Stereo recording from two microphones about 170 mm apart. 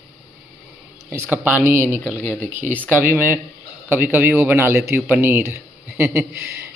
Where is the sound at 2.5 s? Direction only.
45° right (ahead or behind).